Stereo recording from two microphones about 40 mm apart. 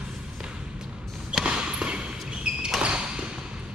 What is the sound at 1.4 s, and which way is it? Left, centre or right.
Basketball bounce, right.